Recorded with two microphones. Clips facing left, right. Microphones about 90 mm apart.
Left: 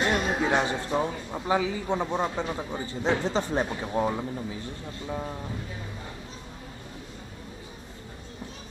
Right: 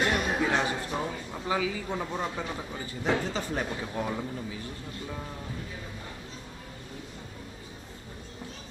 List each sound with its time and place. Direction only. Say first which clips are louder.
0.0 s a man's voice: left 2 dB; 25° left (ahead or behind)